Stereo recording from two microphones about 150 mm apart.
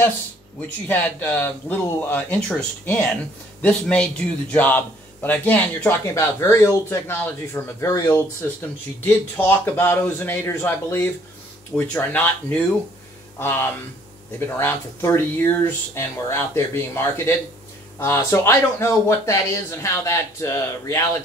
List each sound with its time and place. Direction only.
0.8 s a man's voice: 10° left (ahead or behind)